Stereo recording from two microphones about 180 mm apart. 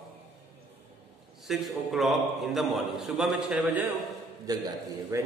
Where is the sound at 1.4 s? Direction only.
Centre (ahead or behind).